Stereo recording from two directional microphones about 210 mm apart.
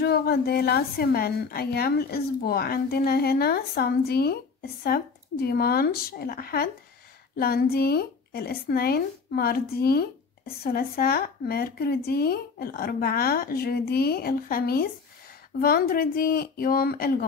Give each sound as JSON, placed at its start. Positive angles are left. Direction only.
{"t": 0.0, "sound": "a woman's voice", "side_deg": 50}